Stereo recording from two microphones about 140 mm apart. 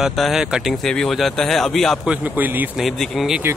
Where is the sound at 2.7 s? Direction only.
Centre (ahead or behind).